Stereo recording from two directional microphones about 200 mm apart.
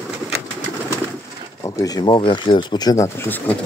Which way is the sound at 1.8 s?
20° left (ahead or behind).